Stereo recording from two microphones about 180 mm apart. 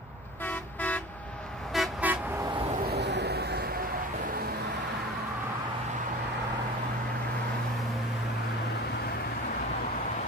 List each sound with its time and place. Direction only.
0.5 s toot: 10° left (ahead or behind)
1.7 s vehicle: 5° right (ahead or behind)
2.9 s a sound: 70° right (ahead or behind)